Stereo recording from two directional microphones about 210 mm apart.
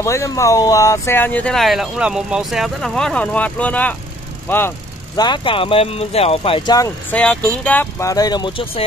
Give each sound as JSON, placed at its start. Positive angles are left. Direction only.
{"t": 0.0, "sound": "speech", "side_deg": 15}
{"t": 7.1, "sound": "speech", "side_deg": 5}